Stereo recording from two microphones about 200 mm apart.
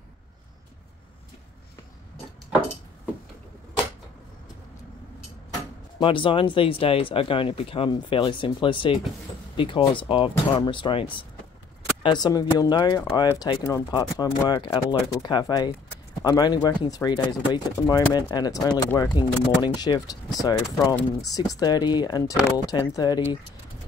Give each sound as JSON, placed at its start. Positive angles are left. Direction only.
{"t": 5.9, "sound": "speech", "side_deg": 25}